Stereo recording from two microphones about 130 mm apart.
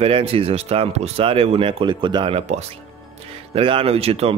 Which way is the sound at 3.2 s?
45° right (ahead or behind).